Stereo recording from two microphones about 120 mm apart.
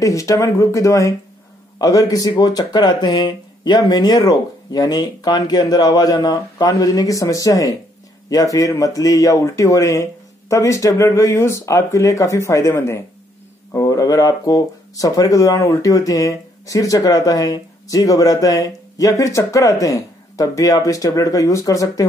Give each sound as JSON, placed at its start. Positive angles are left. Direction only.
{"t": 0.0, "sound": "speech", "side_deg": 25}